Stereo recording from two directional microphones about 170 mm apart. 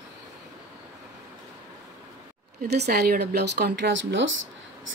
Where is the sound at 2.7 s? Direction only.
75° right (ahead or behind).